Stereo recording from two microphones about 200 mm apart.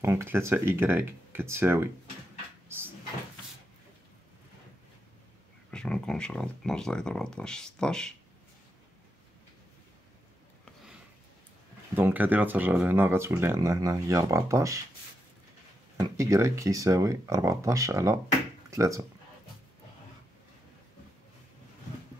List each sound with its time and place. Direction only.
0.0 s speech: 15° right (ahead or behind)
2.7 s cupboard open or close: 10° right (ahead or behind)
5.7 s speech: 5° left (ahead or behind)
11.9 s speech: 10° right (ahead or behind)
16.0 s speech: 15° right (ahead or behind)